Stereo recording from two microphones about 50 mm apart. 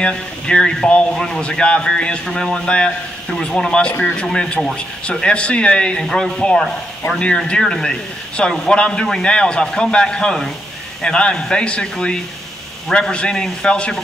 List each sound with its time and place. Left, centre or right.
0.0 s a man's voice: centre